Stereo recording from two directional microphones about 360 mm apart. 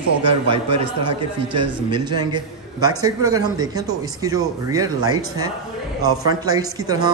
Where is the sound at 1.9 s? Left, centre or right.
Centre.